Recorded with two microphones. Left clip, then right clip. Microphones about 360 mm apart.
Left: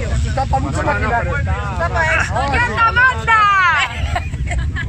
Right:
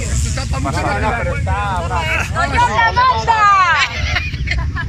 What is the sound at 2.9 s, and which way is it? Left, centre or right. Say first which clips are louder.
Vehicle: even; centre.